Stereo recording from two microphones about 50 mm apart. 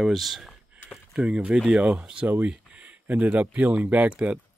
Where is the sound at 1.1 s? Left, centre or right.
Centre.